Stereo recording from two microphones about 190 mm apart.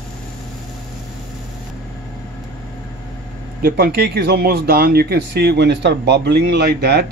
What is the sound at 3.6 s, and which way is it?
Speech, 55° right (ahead or behind).